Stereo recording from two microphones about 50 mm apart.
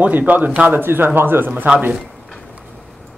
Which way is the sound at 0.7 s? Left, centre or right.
Right.